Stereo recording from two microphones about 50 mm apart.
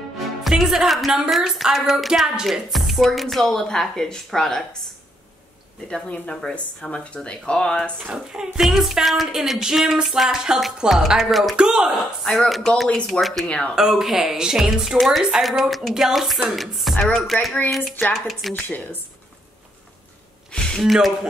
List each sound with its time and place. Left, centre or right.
0.4 s speech: centre
6.0 s speech: left
8.1 s music: centre
8.5 s music: centre
10.0 s speech: centre
11.6 s music: centre
12.0 s speech: centre
12.9 s speech: centre
13.2 s speech: centre
13.7 s music: centre
15.0 s speech: centre
20.5 s a sound: centre
20.8 s speech: centre